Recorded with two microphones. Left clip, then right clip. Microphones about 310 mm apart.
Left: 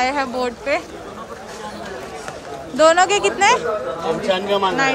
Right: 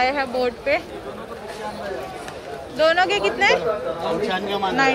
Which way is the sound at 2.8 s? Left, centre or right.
Centre.